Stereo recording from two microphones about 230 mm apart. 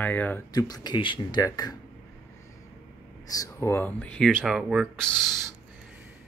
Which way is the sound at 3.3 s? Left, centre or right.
Centre.